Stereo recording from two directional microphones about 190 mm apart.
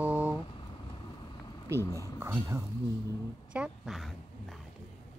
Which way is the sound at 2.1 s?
15° right (ahead or behind).